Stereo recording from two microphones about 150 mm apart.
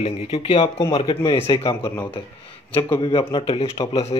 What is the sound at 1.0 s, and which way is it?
Speech, 35° left (ahead or behind).